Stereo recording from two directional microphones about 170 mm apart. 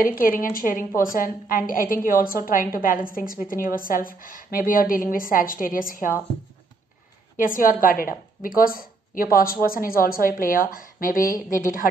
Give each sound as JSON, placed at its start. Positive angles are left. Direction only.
{"t": 0.0, "sound": "a woman's voice", "side_deg": 55}
{"t": 7.3, "sound": "a woman's voice", "side_deg": 55}